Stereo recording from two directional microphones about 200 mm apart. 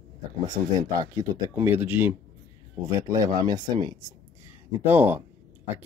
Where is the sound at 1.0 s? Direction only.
20° right (ahead or behind).